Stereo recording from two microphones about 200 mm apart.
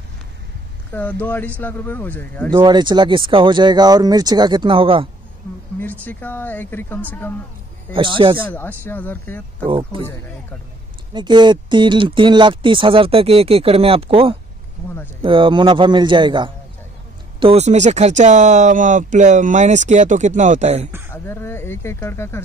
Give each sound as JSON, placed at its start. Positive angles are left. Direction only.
{"t": 0.9, "sound": "speech", "side_deg": 10}
{"t": 2.5, "sound": "speech", "side_deg": -20}
{"t": 5.8, "sound": "speech", "side_deg": 10}
{"t": 8.4, "sound": "speech", "side_deg": 10}
{"t": 9.7, "sound": "speech", "side_deg": -25}
{"t": 11.1, "sound": "speech", "side_deg": -20}
{"t": 21.1, "sound": "speech", "side_deg": 10}